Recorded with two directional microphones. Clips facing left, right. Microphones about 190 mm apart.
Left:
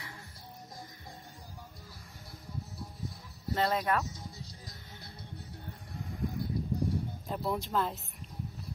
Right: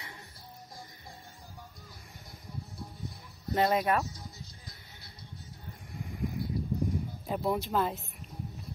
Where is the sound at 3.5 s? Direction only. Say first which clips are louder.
Right 3 dB; 15° right (ahead or behind).